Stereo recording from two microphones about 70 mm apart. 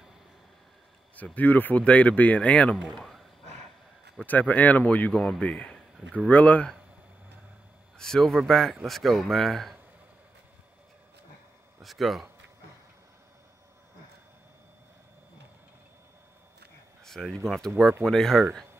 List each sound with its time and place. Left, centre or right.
1.1 s speech: left
2.9 s speech: centre
4.2 s speech: left
5.1 s speech: centre
5.4 s speech: centre
8.0 s speech: centre
11.8 s speech: centre
17.0 s a sound: centre
17.5 s speech: centre